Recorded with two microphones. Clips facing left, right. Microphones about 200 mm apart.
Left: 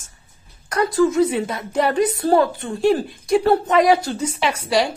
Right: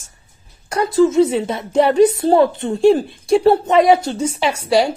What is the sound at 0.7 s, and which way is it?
A woman's voice, 25° right (ahead or behind).